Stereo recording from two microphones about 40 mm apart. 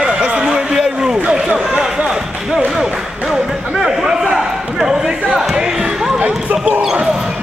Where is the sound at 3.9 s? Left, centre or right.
Centre.